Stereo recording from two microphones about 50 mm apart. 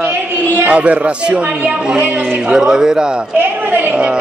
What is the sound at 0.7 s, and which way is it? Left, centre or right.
A man's voice, right.